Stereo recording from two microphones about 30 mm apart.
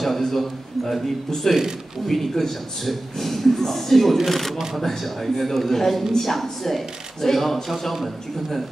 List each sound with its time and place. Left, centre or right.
0.0 s speech: centre
1.3 s speech: centre